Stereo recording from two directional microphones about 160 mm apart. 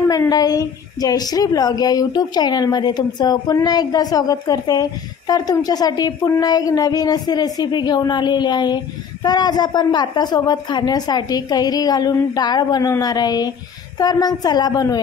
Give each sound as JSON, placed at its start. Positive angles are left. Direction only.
{"t": 0.1, "sound": "a woman's voice", "side_deg": 25}